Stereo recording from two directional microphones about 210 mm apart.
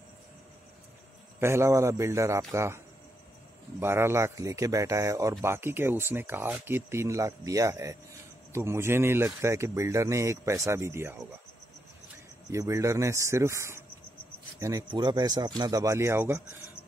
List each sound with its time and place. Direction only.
1.4 s speech: 15° right (ahead or behind)
3.8 s speech: 10° right (ahead or behind)
12.4 s speech: 15° right (ahead or behind)